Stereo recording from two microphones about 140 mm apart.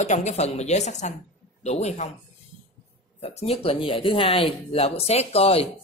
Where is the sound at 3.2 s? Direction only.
45° left (ahead or behind).